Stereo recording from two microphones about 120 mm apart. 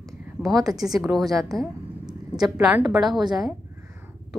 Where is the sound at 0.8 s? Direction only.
5° right (ahead or behind).